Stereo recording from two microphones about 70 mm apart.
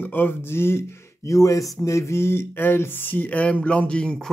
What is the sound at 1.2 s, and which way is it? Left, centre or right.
Speech, left.